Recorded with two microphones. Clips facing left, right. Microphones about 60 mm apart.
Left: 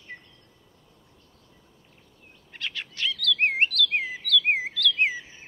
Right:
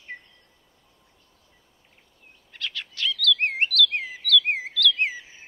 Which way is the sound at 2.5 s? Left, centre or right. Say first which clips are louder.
Even; centre.